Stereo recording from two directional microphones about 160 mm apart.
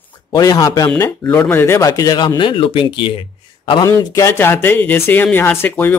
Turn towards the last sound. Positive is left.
turn(degrees=10)  # may be behind; listen again after turning